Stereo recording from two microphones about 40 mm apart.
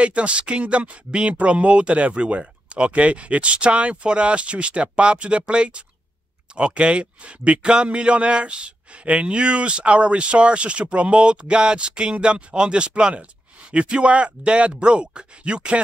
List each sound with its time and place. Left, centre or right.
0.0 s a man's voice: right